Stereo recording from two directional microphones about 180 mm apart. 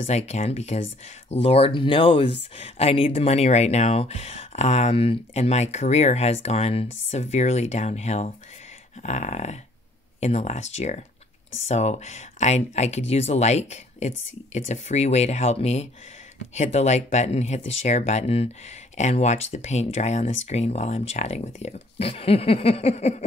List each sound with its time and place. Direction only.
0.0 s speech: 40° left (ahead or behind)